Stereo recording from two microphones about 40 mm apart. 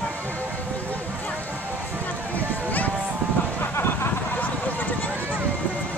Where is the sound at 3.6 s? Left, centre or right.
Left.